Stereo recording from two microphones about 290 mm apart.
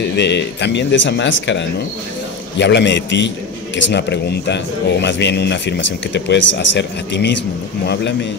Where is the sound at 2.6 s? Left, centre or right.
Left.